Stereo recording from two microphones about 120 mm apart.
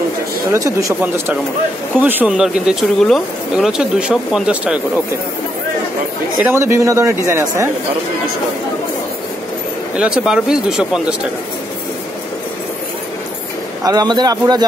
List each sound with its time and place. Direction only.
0.5 s speech: 25° right (ahead or behind); by 4.7 s 5° right (ahead or behind)
6.4 s speech: 20° right (ahead or behind)
9.9 s speech: 5° right (ahead or behind)
13.8 s a man's voice: 35° right (ahead or behind)